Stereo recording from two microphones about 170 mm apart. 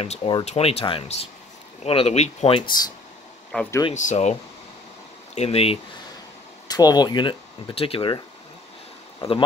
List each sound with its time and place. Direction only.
0.0 s speech: 35° left (ahead or behind)
3.5 s speech: 10° left (ahead or behind)
3.9 s speech: 45° left (ahead or behind)
6.7 s speech: 25° left (ahead or behind)
9.2 s speech: 35° left (ahead or behind)